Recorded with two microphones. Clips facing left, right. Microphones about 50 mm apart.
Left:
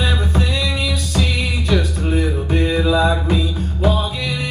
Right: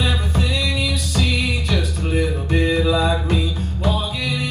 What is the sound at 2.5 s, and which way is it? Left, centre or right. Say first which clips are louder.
Music: left 1 dB; centre.